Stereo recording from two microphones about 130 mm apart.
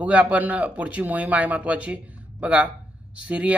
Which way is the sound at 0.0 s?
10° right (ahead or behind).